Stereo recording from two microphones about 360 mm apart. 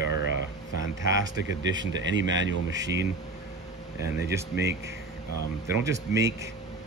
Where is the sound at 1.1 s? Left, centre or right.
Right.